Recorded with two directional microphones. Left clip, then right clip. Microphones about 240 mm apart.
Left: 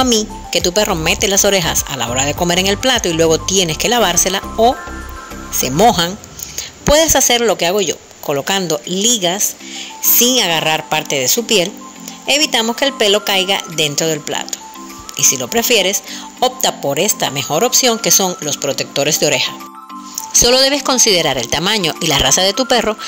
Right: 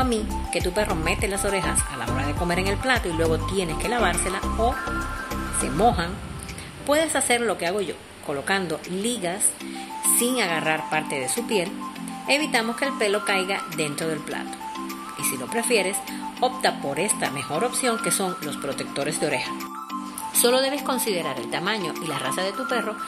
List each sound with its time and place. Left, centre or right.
0.0 s speech: left
5.8 s speech: left